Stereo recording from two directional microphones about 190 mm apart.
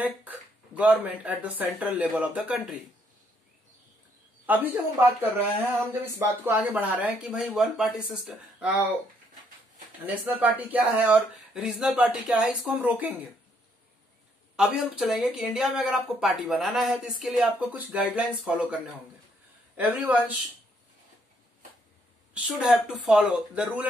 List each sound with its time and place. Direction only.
0.7 s speech: 10° right (ahead or behind)
4.5 s speech: 10° right (ahead or behind)
10.0 s speech: 10° right (ahead or behind)
14.6 s speech: 5° right (ahead or behind)
19.8 s speech: 10° right (ahead or behind)
22.3 s speech: 5° right (ahead or behind)